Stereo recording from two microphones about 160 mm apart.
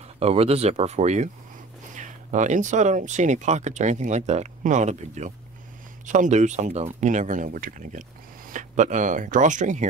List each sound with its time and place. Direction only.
0.2 s speech: 40° right (ahead or behind)